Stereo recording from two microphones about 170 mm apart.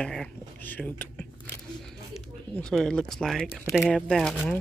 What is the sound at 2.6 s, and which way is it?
Speech, 5° left (ahead or behind).